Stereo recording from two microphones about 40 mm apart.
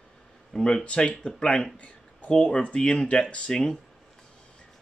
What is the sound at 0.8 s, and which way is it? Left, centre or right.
Speech, left.